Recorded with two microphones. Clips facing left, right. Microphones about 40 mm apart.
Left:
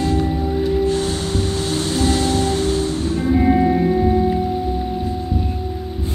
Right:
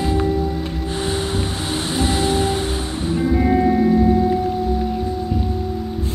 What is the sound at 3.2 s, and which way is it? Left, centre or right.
Music, centre.